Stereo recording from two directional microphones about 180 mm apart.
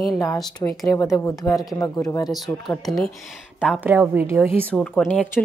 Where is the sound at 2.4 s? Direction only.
Centre (ahead or behind).